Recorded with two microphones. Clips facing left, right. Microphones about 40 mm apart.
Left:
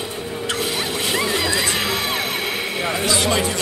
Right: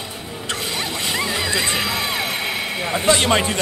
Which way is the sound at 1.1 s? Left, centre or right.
Centre.